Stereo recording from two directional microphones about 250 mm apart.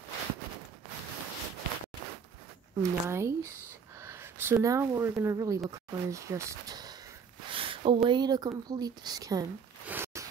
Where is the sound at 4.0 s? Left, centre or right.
Centre.